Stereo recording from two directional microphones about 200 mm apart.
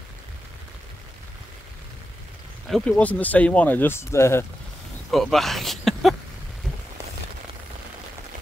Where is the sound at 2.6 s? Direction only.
Centre (ahead or behind).